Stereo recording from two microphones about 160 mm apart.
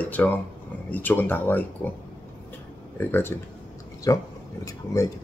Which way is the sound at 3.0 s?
10° left (ahead or behind).